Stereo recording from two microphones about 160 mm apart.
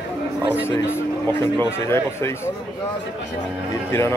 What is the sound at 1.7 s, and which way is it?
Speech, 15° left (ahead or behind).